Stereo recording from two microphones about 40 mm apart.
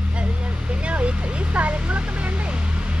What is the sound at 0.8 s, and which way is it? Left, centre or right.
Vehicle, right.